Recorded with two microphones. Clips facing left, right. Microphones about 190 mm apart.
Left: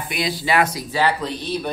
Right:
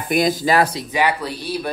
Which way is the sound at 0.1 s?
45° right (ahead or behind).